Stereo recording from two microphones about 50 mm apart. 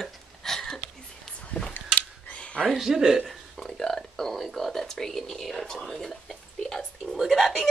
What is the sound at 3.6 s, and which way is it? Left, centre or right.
A woman's voice, centre.